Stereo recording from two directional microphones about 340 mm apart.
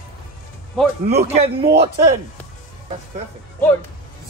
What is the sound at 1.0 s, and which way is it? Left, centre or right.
A man's voice, centre.